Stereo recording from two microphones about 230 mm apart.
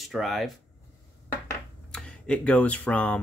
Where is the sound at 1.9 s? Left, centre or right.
Centre.